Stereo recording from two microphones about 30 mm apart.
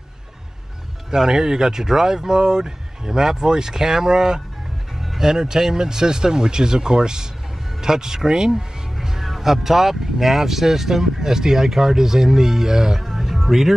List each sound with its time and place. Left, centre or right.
1.1 s speech: centre
9.2 s speech: centre